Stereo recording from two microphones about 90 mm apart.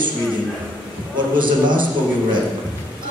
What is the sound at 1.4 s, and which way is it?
Speech, 65° right (ahead or behind).